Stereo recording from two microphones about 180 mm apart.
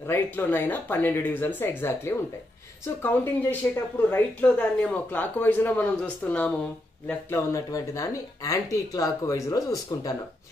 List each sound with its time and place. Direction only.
0.1 s speech: 10° left (ahead or behind)